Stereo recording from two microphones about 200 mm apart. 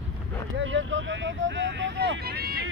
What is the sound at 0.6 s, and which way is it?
Speech, 70° right (ahead or behind).